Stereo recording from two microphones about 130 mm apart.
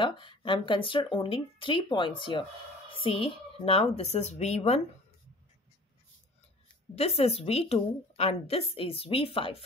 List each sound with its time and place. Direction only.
0.0 s a woman's voice: 40° left (ahead or behind); by 4.8 s 55° left (ahead or behind)
7.0 s a woman's voice: 50° left (ahead or behind)